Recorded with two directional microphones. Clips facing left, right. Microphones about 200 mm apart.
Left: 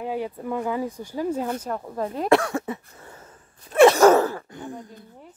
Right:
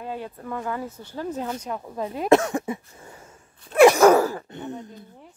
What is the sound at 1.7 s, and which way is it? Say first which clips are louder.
Speech: left 2 dB; 5° right (ahead or behind).